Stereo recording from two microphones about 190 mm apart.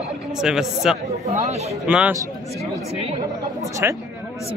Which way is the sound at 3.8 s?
10° right (ahead or behind).